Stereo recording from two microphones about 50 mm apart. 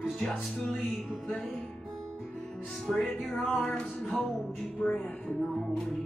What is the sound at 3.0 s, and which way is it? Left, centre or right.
Music, centre.